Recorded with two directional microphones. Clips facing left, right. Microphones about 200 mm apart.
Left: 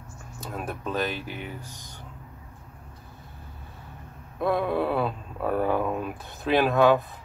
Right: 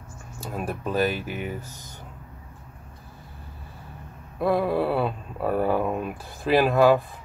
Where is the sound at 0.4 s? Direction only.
5° right (ahead or behind).